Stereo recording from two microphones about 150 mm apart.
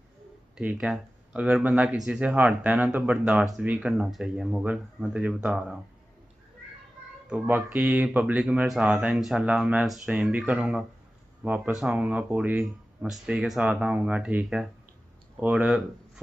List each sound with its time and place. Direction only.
0.6 s speech: 5° right (ahead or behind)
7.2 s speech: 10° right (ahead or behind)